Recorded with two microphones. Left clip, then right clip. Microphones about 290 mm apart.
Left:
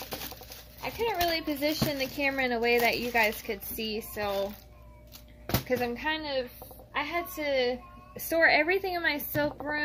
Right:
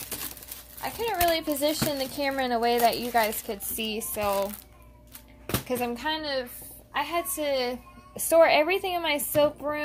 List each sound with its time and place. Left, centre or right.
0.8 s a woman's voice: right
4.1 s a sound: right
5.7 s a woman's voice: right